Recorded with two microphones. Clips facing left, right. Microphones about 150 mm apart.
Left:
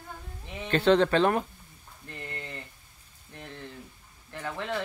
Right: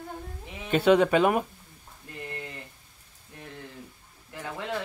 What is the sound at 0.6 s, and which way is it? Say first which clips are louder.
Speech: right 1 dB; 10° right (ahead or behind).